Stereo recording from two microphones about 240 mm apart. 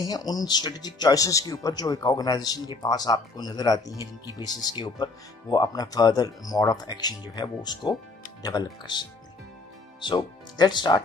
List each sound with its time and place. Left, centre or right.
0.0 s speech: centre